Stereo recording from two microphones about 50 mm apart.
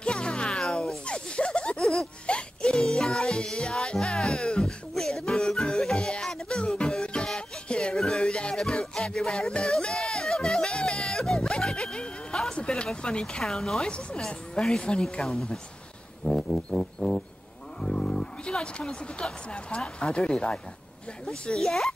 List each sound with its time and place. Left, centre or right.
0.0 s music: centre
1.8 s a sound: centre
2.2 s music: centre
12.5 s a sound: centre
13.4 s speech: centre
13.8 s speech: centre
16.3 s music: centre
17.8 s wild animals: centre
19.5 s speech: centre
21.5 s speech: centre